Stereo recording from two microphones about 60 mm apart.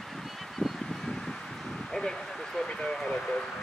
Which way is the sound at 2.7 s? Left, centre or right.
Centre.